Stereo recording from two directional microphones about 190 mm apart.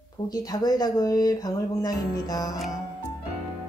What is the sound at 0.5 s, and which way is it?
Speech, 20° left (ahead or behind).